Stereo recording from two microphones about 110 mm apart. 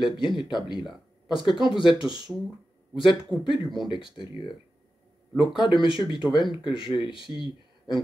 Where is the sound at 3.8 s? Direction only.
50° left (ahead or behind).